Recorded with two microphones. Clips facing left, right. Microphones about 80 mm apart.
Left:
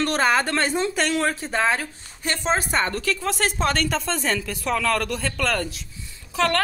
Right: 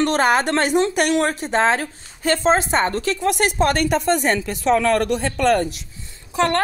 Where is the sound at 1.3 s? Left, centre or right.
Right.